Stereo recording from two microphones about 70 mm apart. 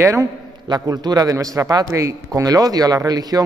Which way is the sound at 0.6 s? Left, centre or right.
Right.